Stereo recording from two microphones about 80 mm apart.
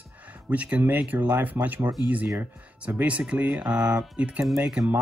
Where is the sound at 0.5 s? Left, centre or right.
Centre.